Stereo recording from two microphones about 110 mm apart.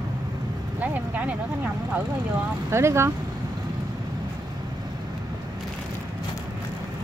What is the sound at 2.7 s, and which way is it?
Speech, 25° right (ahead or behind).